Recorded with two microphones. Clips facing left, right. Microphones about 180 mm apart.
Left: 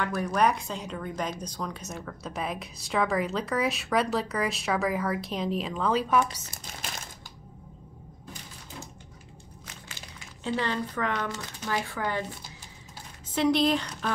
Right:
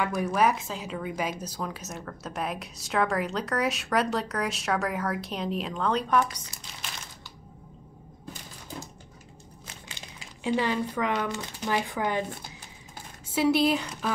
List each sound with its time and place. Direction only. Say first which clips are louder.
0.1 s a woman's voice: right 1 dB; 5° right (ahead or behind)
6.7 s crumpling: left 3 dB; 45° left (ahead or behind)
9.8 s speech: right 1 dB; 15° right (ahead or behind)
13.3 s speech: right 1 dB; 5° right (ahead or behind)